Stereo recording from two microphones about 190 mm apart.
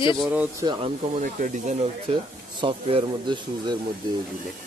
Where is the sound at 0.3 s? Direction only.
10° right (ahead or behind).